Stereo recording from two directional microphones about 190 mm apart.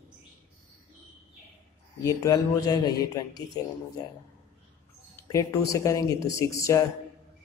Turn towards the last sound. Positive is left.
turn(degrees=15)  # may be behind; listen again after turning